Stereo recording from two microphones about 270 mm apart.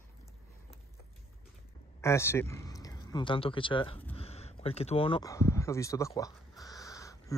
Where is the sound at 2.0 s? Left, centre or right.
Centre.